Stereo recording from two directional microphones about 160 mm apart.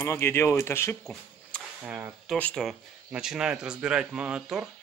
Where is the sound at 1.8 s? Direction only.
10° right (ahead or behind).